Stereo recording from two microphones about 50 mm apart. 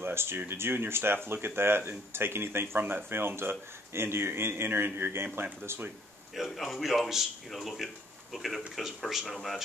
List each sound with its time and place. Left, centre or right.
0.0 s speech: right
6.5 s speech: centre